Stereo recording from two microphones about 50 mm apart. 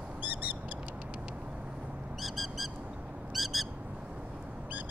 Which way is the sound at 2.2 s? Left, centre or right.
Centre.